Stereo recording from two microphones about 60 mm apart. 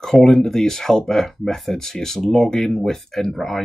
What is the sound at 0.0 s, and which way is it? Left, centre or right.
Speech, centre.